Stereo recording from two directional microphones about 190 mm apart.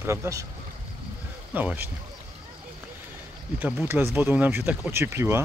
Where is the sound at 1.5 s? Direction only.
10° right (ahead or behind).